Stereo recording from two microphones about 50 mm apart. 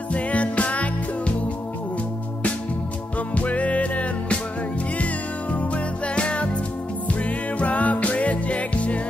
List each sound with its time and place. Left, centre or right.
0.1 s music: left
3.3 s music: left